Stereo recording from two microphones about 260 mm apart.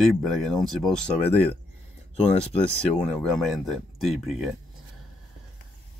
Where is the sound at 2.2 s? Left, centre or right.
Left.